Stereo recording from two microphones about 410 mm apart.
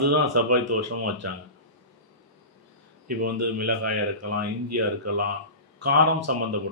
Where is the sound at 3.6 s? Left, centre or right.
Right.